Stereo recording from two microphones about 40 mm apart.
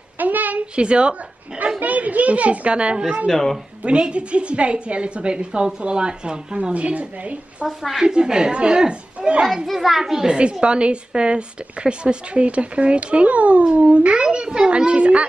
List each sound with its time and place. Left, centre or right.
0.2 s a sound: right
0.7 s a child's voice: right
1.8 s a child's voice: right
3.3 s a woman's voice: centre
3.8 s a child's voice: right
7.6 s a woman's voice: centre
8.0 s a child's voice: centre
9.7 s a child's voice: centre; by 15.2 s right